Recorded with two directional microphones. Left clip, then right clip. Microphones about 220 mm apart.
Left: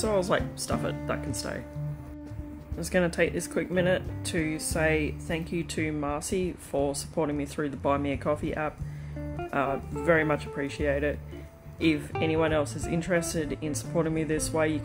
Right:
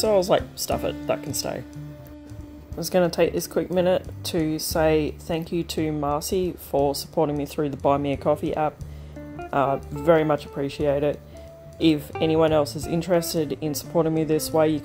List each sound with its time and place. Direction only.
0.0 s speech: 20° right (ahead or behind)
2.8 s speech: 15° right (ahead or behind)
12.2 s speech: 20° right (ahead or behind)